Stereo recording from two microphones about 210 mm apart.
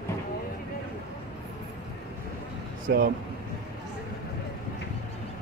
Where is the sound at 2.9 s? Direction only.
50° right (ahead or behind).